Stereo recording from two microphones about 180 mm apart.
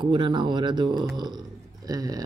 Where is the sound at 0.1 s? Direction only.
25° right (ahead or behind).